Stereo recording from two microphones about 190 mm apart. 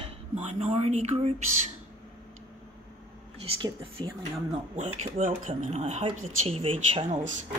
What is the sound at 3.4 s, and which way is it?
Speech, 25° right (ahead or behind).